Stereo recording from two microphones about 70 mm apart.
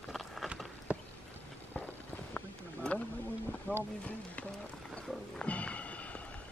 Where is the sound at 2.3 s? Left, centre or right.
Centre.